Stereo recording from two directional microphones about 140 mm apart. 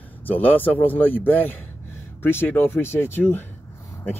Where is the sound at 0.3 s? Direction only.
10° left (ahead or behind).